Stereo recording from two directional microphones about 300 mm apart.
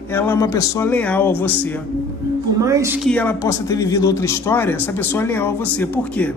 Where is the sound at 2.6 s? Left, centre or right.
Centre.